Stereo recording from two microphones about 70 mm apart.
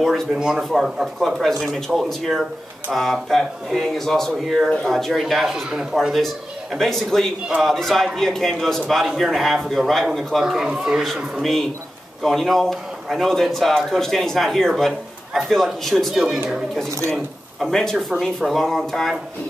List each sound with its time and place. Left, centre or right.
0.0 s a man's voice: centre
6.1 s a man's voice: centre
10.4 s speech: centre
12.2 s a man's voice: centre